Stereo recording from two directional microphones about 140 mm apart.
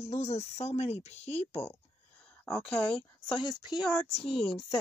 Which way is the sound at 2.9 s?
40° left (ahead or behind).